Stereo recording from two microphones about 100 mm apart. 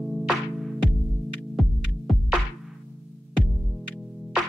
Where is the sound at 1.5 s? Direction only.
Centre (ahead or behind).